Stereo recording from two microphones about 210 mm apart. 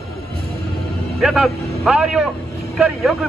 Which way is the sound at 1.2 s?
Centre (ahead or behind).